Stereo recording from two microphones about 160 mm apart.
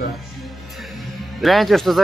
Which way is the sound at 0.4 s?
Centre (ahead or behind).